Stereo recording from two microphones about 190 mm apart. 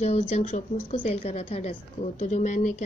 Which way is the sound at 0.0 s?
35° left (ahead or behind).